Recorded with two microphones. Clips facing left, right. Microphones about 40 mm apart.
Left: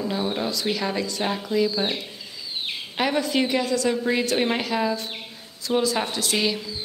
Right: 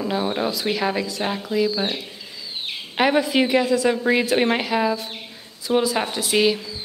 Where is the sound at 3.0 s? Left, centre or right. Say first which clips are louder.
Right 4 dB; centre.